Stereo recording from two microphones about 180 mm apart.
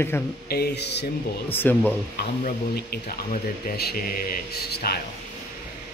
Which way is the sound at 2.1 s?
60° left (ahead or behind).